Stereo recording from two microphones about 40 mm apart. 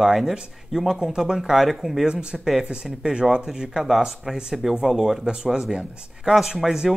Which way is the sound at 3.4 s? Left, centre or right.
Centre.